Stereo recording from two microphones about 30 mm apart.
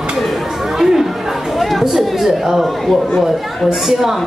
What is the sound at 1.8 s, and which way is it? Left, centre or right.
Speech, centre.